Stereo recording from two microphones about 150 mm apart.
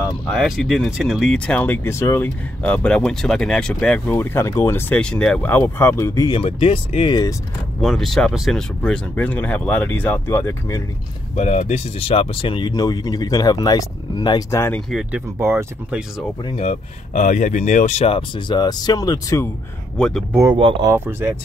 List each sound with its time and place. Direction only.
0.3 s speech: centre (ahead or behind); by 6.4 s 25° left (ahead or behind)
6.4 s speech: 40° left (ahead or behind)
7.8 s speech: centre (ahead or behind); by 10.8 s 20° left (ahead or behind)
11.3 s speech: 50° left (ahead or behind); by 14.6 s 25° left (ahead or behind)
14.9 s speech: centre (ahead or behind)
15.3 s speech: 15° right (ahead or behind)
16.4 s speech: 45° left (ahead or behind); by 19.4 s 25° left (ahead or behind)
20.0 s speech: 5° left (ahead or behind)
20.5 s speech: 35° right (ahead or behind)
20.9 s speech: 15° right (ahead or behind)